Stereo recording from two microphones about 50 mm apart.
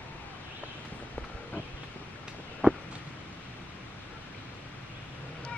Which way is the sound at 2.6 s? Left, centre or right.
Right.